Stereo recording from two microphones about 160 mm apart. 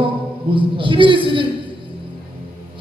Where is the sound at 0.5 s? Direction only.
30° right (ahead or behind).